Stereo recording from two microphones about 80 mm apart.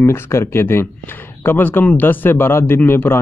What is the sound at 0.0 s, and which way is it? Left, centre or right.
Speech, left.